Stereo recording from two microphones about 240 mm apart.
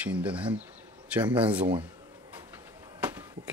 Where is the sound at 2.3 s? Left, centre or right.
Centre.